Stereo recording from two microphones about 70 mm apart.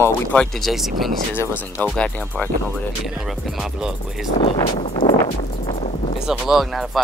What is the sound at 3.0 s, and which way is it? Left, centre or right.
Speech, centre.